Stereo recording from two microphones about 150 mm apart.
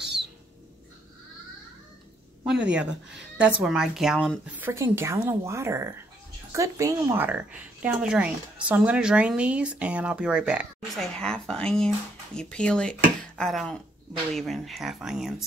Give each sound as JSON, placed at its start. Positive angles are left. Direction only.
{"t": 0.0, "sound": "bird", "side_deg": -90}
{"t": 2.6, "sound": "speech", "side_deg": -5}
{"t": 4.6, "sound": "speech", "side_deg": -15}
{"t": 11.1, "sound": "speech", "side_deg": 5}